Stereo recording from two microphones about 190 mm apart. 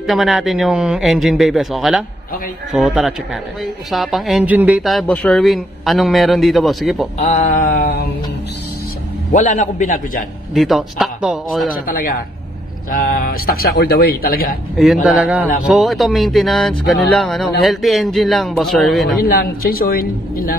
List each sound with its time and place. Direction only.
0.0 s speech: centre (ahead or behind)
7.2 s a man's voice: 40° left (ahead or behind); by 8.1 s 55° left (ahead or behind)
9.3 s a man's voice: 40° left (ahead or behind)
10.5 s speech: centre (ahead or behind)
11.9 s a man's voice: 50° left (ahead or behind)
15.0 s speech: 5° right (ahead or behind)
19.2 s a man's voice: 50° left (ahead or behind)